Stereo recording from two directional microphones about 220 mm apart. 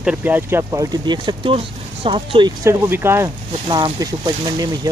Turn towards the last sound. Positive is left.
turn(degrees=-15)  # may be behind; listen again after turning